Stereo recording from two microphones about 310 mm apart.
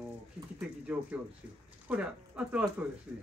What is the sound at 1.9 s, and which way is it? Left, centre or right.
Speech, centre.